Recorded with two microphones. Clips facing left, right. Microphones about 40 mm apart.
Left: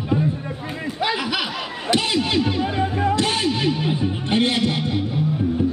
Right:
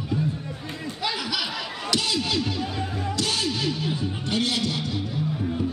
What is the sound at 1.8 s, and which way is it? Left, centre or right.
Music, left.